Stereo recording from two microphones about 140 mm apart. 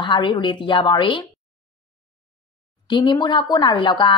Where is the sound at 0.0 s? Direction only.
35° left (ahead or behind).